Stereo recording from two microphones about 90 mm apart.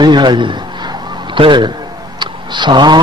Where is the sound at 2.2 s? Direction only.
55° right (ahead or behind).